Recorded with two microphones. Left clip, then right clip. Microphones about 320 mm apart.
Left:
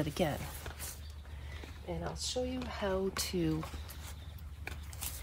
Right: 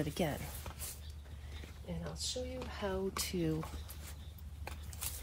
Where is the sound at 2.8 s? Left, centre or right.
Centre.